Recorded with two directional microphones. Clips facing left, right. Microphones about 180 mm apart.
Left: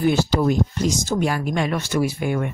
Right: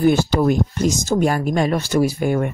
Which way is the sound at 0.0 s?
50° right (ahead or behind).